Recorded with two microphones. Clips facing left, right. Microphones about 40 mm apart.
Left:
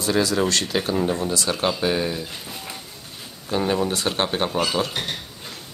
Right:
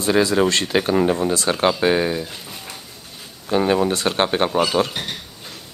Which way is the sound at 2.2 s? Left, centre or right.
Centre.